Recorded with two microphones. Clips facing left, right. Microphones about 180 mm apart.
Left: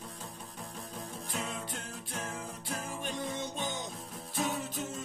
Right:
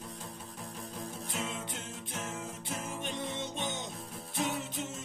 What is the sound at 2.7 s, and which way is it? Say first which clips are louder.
Music: left 1 dB; 25° right (ahead or behind).